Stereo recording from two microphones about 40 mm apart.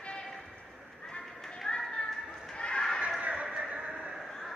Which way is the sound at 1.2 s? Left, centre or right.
Centre.